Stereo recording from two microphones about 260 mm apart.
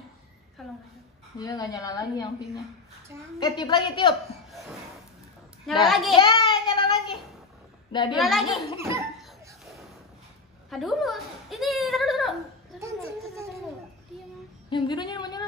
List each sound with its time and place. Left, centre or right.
1.4 s a woman's voice: centre
3.3 s a woman's voice: centre
4.1 s chuckle: centre
5.9 s a child's voice: centre
6.1 s child singing: centre
7.9 s a child's voice: centre
8.2 s a child's voice: centre
10.7 s speech: centre
14.7 s speech: centre